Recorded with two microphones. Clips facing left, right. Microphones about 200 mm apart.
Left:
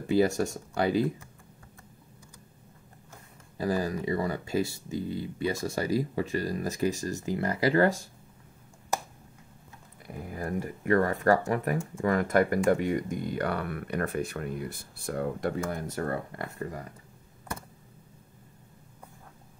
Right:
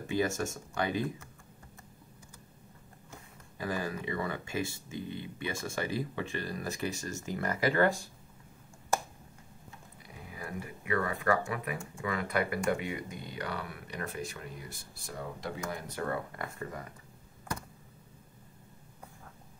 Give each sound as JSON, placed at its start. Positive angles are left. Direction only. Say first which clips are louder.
{"t": 0.0, "sound": "speech", "louder": "left 7 dB", "side_deg": 35}
{"t": 3.5, "sound": "speech", "louder": "left 6 dB", "side_deg": 40}
{"t": 10.0, "sound": "speech", "louder": "left 9 dB", "side_deg": 50}